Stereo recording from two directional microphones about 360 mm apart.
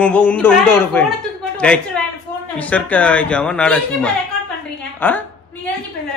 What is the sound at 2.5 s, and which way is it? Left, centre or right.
Mantra, centre.